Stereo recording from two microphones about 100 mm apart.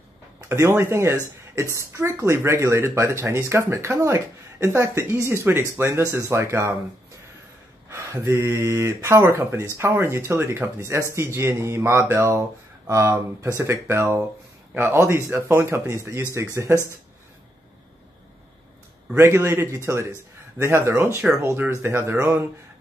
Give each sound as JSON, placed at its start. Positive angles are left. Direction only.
{"t": 0.5, "sound": "speech", "side_deg": -25}
{"t": 7.9, "sound": "speech", "side_deg": -25}
{"t": 19.1, "sound": "speech", "side_deg": -25}